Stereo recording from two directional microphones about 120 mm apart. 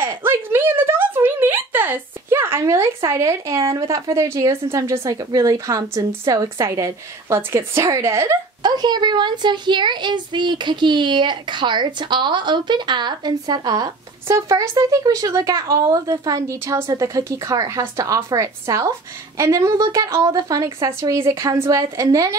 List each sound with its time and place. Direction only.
0.0 s a sound: 20° right (ahead or behind)
3.7 s speech: 25° right (ahead or behind)
8.6 s a woman's voice: 35° right (ahead or behind)
14.2 s speech: 25° right (ahead or behind)